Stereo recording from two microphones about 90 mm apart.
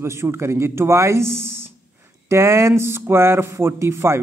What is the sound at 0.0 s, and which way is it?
Speech, 30° right (ahead or behind).